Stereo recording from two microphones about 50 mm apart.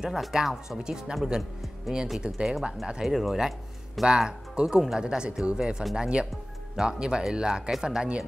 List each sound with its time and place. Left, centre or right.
0.0 s speech: centre